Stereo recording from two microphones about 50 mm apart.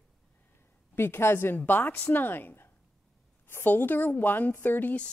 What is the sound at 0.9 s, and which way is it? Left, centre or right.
A woman's voice, left.